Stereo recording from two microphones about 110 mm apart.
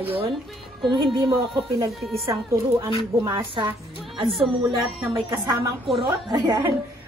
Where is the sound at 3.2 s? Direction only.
50° right (ahead or behind).